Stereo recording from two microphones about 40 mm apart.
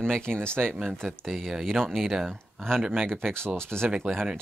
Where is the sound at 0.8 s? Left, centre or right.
Centre.